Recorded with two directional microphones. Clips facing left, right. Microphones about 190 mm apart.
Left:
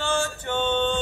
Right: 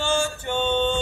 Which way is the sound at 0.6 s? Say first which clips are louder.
Right 1 dB; 10° right (ahead or behind).